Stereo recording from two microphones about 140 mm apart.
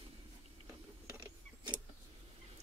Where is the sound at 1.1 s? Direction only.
30° right (ahead or behind).